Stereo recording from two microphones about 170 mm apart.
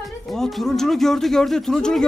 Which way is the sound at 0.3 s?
Centre (ahead or behind).